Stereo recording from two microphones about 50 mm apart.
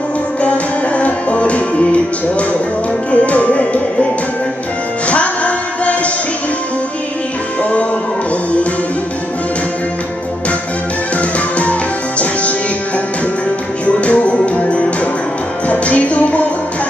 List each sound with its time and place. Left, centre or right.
0.4 s music: left
14.0 s music: left